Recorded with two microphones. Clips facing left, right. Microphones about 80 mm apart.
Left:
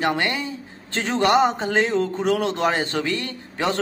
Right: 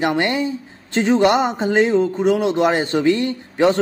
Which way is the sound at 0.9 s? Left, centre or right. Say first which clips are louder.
Right 4 dB; centre.